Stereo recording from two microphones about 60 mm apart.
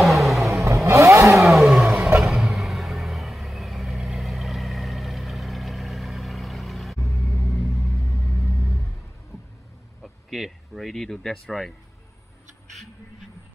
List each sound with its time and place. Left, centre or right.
0.0 s vehicle: centre
0.8 s vehicle: right
1.3 s vehicle: centre
10.0 s a sound: centre